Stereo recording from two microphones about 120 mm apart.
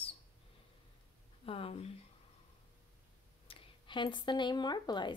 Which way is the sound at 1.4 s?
50° left (ahead or behind).